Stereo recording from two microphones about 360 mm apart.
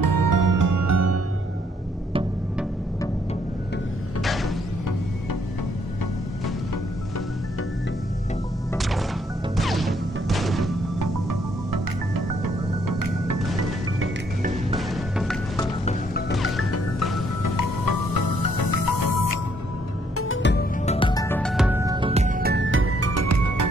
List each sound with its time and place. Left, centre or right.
0.0 s music: right
4.2 s music: centre
8.7 s music: centre
11.0 s music: right
14.8 s music: centre
15.8 s music: left
17.4 s music: left
20.2 s music: left
20.8 s music: centre; by 23.7 s right